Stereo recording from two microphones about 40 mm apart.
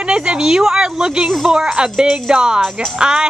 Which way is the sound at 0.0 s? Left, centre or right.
Right.